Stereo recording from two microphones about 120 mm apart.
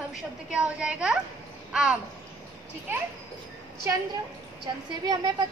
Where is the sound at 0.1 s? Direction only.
10° right (ahead or behind).